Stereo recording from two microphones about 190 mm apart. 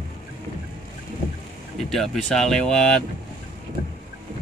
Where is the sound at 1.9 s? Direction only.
Centre (ahead or behind).